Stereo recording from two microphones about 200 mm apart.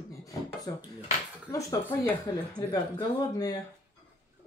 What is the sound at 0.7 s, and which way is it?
Speech, 15° left (ahead or behind).